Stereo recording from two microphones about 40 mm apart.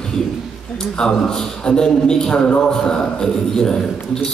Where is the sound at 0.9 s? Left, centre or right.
Centre.